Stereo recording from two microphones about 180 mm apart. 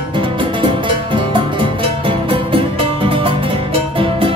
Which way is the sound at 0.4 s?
25° right (ahead or behind).